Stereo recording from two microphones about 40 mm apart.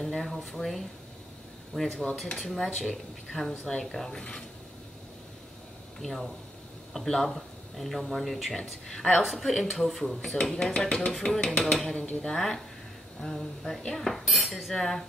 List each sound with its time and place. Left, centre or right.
0.1 s speech: centre
5.9 s speech: centre
9.2 s speech: centre
10.3 s speech: centre